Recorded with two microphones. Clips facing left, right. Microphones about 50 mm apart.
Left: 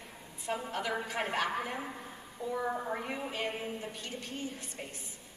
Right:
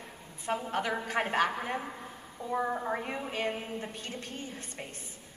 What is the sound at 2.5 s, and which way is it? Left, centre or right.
Speech, right.